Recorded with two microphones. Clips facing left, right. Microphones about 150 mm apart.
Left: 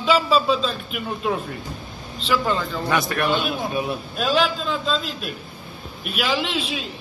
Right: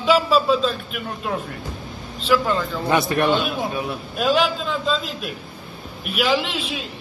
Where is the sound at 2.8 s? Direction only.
25° right (ahead or behind).